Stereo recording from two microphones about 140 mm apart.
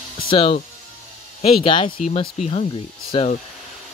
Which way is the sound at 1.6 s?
40° left (ahead or behind).